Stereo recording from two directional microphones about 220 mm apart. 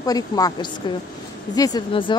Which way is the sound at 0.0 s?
15° left (ahead or behind).